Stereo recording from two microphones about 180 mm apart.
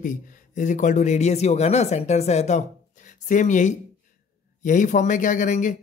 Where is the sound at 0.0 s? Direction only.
45° left (ahead or behind).